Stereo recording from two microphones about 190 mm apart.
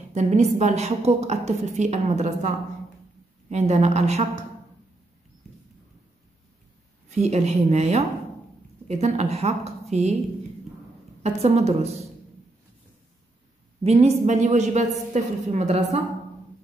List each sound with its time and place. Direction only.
0.1 s a woman's voice: 40° right (ahead or behind)
7.2 s a woman's voice: 35° right (ahead or behind)
11.2 s a woman's voice: 35° right (ahead or behind)
13.8 s a woman's voice: 35° right (ahead or behind)